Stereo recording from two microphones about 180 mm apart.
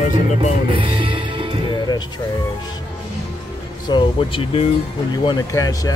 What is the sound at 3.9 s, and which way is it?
Speech, 30° left (ahead or behind).